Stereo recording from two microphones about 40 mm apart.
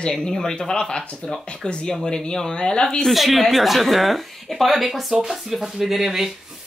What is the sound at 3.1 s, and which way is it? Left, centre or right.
A woman's voice, centre.